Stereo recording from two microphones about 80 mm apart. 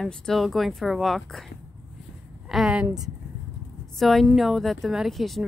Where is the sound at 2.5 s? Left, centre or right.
Centre.